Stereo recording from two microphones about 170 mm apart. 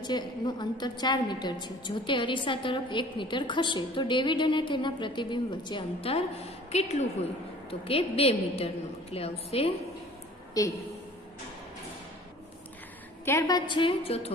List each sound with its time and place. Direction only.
0.0 s a woman's voice: 25° left (ahead or behind)
10.6 s a woman's voice: 20° left (ahead or behind)
13.2 s a woman's voice: 15° left (ahead or behind); by 14.3 s 35° left (ahead or behind)